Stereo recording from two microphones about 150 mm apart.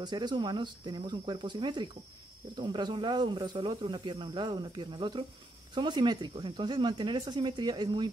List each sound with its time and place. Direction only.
0.0 s speech: 30° right (ahead or behind)